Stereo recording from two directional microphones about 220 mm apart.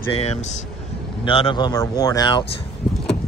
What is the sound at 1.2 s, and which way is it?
Speech, 20° left (ahead or behind).